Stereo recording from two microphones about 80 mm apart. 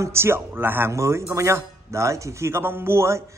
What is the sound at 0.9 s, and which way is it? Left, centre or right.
A man's voice, right.